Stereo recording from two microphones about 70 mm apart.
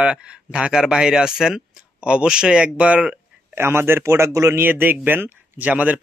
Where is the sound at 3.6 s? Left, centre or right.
Right.